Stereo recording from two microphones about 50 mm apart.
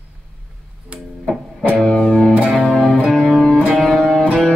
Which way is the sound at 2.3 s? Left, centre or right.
Centre.